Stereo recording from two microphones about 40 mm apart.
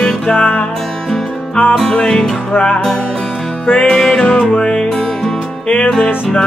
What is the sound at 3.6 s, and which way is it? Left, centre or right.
Music, left.